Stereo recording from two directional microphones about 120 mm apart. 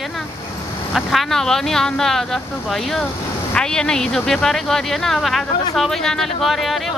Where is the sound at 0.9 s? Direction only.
Centre (ahead or behind).